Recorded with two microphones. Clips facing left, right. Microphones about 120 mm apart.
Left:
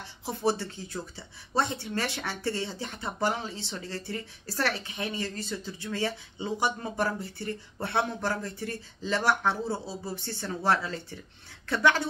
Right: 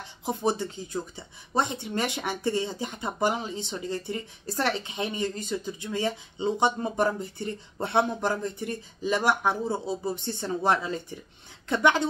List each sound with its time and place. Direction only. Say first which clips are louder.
0.2 s speech: right 1 dB; 20° right (ahead or behind)